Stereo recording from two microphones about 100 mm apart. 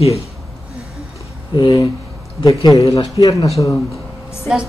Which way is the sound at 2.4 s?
40° left (ahead or behind).